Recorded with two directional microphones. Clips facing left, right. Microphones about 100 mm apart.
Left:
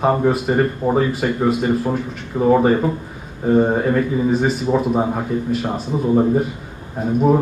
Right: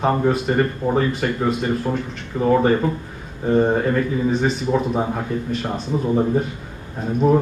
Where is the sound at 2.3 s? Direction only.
15° left (ahead or behind).